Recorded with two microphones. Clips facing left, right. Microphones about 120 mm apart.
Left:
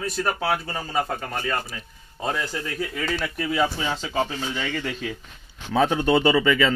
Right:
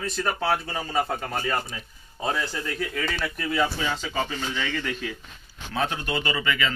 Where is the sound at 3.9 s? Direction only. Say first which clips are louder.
Left 3 dB; 25° left (ahead or behind).